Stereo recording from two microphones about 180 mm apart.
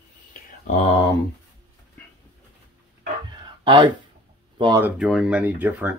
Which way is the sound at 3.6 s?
25° right (ahead or behind).